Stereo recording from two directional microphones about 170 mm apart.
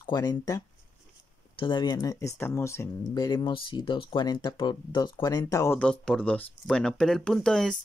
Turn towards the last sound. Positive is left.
turn(degrees=5)  # may be behind; listen again after turning